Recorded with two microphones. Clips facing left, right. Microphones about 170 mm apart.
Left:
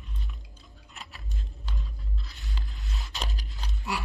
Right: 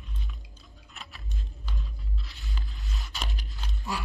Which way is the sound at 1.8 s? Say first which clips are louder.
Even; 20° left (ahead or behind).